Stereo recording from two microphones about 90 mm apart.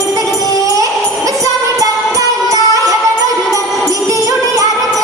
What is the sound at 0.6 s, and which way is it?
Music, 40° right (ahead or behind).